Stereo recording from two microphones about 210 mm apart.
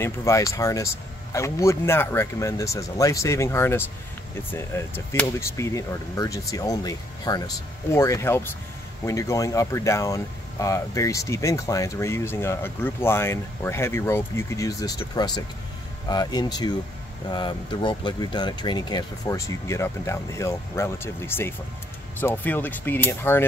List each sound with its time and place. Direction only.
0.0 s speech: 15° left (ahead or behind)